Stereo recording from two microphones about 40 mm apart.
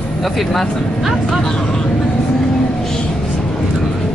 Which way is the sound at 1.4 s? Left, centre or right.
Centre.